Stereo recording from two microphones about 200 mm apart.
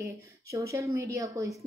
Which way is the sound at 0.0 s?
15° right (ahead or behind).